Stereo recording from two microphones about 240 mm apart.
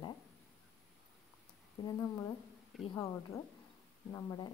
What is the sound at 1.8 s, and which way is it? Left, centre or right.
A woman's voice, centre.